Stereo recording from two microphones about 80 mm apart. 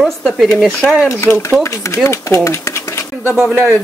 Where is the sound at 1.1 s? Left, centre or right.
Left.